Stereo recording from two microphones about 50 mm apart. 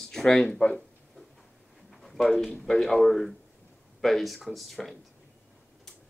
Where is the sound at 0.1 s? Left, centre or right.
Centre.